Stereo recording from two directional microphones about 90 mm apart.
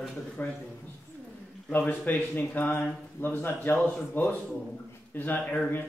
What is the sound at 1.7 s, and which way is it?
Speech, 20° left (ahead or behind).